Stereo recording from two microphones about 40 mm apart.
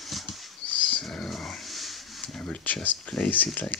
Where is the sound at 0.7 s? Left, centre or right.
Left.